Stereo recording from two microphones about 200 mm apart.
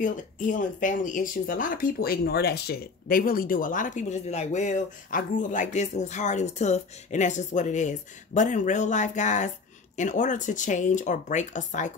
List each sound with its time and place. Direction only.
0.0 s speech: 40° left (ahead or behind)